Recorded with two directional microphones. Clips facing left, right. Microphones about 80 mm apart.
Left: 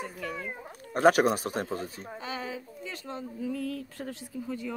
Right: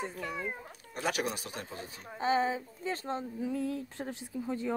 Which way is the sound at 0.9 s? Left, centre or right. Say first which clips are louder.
Left 12 dB; left.